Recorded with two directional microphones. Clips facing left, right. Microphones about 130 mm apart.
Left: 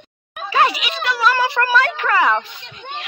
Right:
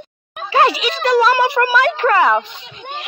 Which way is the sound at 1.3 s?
15° right (ahead or behind).